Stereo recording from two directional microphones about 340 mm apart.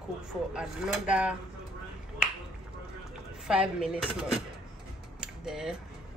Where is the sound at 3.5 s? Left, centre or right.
Centre.